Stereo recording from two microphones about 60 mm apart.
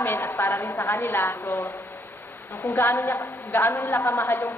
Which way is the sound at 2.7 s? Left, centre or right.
Left.